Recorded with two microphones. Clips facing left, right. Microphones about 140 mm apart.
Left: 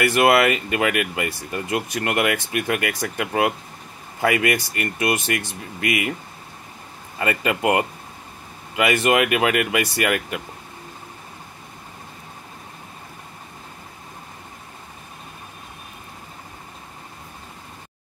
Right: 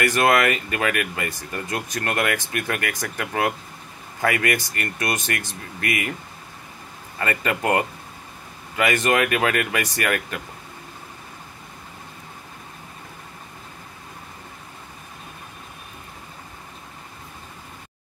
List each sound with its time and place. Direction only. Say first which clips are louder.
0.1 s speech: left 2 dB; 15° left (ahead or behind)
7.2 s speech: left 2 dB; 15° left (ahead or behind)